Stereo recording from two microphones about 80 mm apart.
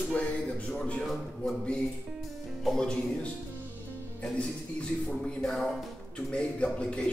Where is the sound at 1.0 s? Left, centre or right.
Centre.